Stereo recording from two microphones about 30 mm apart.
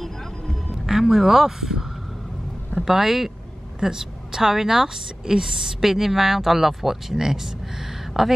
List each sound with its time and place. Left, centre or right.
0.8 s a woman's voice: centre
4.7 s a woman's voice: right